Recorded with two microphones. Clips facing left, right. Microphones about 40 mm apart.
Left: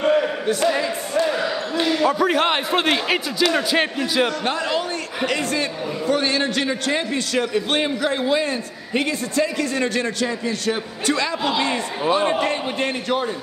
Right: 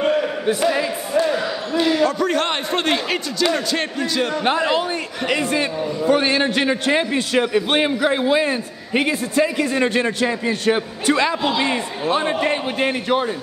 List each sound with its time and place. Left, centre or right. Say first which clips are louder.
0.0 s a sound: left 1 dB; centre
0.5 s basketball bounce: right 3 dB; centre
2.0 s a man's voice: left 1 dB; centre
4.5 s a man's voice: right 4 dB; right
12.2 s speech: left 1 dB; centre
12.4 s a man's voice: right 3 dB; centre